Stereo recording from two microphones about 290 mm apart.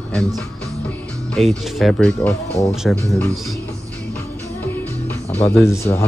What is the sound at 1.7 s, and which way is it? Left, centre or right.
Speech, centre.